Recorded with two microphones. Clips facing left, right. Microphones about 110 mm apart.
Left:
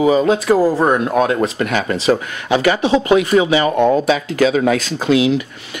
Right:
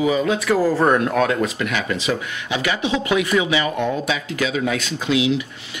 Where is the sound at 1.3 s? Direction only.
40° left (ahead or behind).